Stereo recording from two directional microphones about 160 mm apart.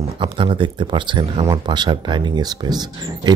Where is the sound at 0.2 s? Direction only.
30° right (ahead or behind).